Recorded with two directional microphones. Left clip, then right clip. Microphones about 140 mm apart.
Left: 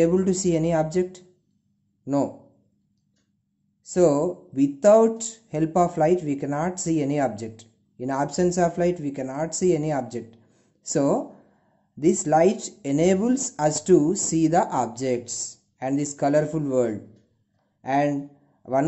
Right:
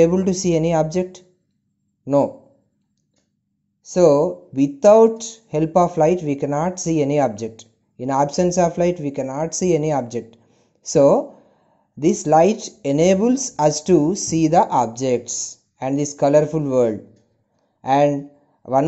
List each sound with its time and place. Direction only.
0.0 s speech: 20° right (ahead or behind)
2.0 s speech: 30° right (ahead or behind)
3.9 s speech: 20° right (ahead or behind)
10.5 s a sound: 20° right (ahead or behind)
12.3 s a man's voice: 25° right (ahead or behind)